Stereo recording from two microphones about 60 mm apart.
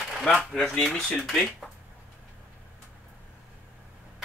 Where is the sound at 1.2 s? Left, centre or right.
Centre.